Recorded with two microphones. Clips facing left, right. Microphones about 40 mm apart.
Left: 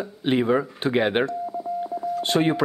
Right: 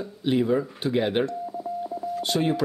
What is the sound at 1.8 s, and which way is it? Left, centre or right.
Telephone dialing, left.